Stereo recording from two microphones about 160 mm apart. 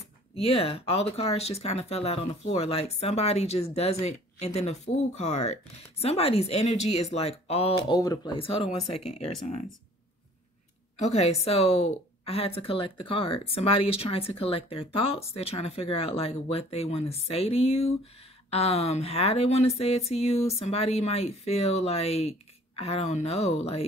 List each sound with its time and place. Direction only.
0.4 s a woman's voice: 35° left (ahead or behind)
7.7 s a woman's voice: 25° left (ahead or behind); by 9.3 s 40° left (ahead or behind)
11.0 s a woman's voice: 45° left (ahead or behind)